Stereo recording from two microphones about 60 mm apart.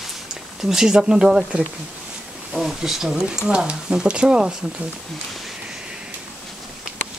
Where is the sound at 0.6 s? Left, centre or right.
Centre.